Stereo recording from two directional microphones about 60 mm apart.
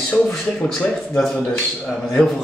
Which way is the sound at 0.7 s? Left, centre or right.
Centre.